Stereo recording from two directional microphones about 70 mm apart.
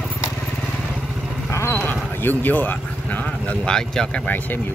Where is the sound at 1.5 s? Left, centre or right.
Left; by 4.2 s centre.